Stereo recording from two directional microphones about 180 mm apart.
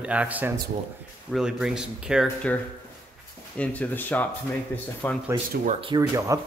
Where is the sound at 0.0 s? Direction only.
5° right (ahead or behind).